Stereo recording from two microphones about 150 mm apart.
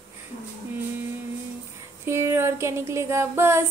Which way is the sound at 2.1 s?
15° right (ahead or behind).